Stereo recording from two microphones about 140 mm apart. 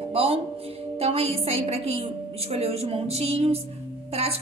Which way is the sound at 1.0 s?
45° right (ahead or behind).